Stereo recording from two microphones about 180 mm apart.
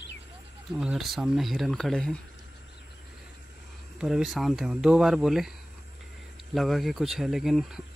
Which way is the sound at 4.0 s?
Centre (ahead or behind).